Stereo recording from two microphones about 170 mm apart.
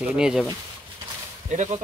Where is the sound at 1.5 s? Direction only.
45° right (ahead or behind).